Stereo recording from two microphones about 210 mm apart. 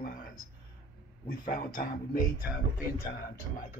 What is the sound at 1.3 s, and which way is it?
Speech, 40° left (ahead or behind).